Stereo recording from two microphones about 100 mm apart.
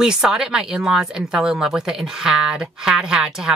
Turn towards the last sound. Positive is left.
turn(degrees=-5)  # may be behind; listen again after turning